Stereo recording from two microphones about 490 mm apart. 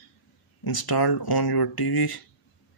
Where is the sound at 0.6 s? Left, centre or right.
Left.